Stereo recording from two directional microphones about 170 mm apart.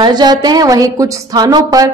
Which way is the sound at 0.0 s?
25° right (ahead or behind).